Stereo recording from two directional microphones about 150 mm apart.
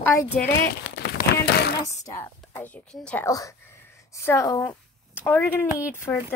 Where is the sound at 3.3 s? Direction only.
20° left (ahead or behind).